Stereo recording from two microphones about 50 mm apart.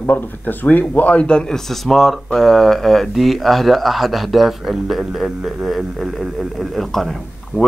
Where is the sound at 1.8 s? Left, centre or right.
Centre.